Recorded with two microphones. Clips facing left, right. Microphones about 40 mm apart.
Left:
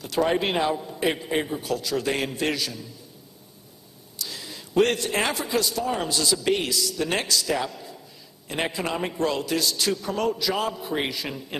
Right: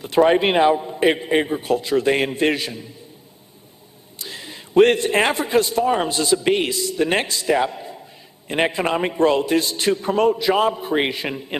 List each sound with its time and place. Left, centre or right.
0.0 s a man's voice: right
4.2 s a man's voice: right